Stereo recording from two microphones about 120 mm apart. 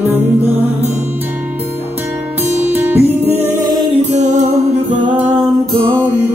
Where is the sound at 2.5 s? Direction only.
15° right (ahead or behind).